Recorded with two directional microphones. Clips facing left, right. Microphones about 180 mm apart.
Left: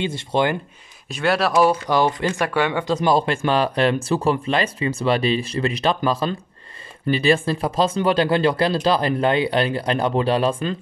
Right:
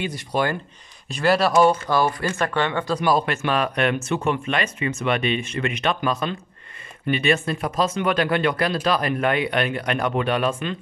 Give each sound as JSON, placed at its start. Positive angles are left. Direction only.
{"t": 0.0, "sound": "speech", "side_deg": 25}
{"t": 1.1, "sound": "speech", "side_deg": 0}
{"t": 1.9, "sound": "speech", "side_deg": 20}
{"t": 3.1, "sound": "speech", "side_deg": 30}